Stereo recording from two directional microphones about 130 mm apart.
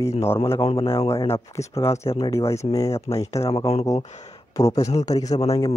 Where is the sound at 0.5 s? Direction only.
45° left (ahead or behind).